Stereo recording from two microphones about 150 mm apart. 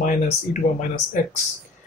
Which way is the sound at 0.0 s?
60° left (ahead or behind).